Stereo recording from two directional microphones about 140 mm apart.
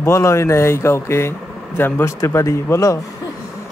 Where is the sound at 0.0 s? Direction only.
20° left (ahead or behind).